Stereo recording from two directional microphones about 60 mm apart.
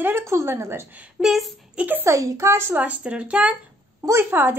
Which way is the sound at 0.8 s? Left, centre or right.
Right.